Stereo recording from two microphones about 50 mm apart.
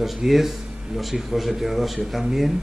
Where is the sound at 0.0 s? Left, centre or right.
Centre.